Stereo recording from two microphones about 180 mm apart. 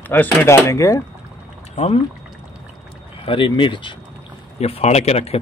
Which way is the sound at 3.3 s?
30° left (ahead or behind).